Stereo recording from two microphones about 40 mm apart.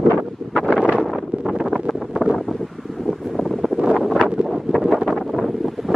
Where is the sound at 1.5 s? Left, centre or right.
Centre.